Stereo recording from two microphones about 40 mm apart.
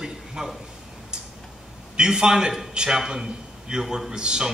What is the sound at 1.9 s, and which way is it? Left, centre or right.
A man's voice, centre.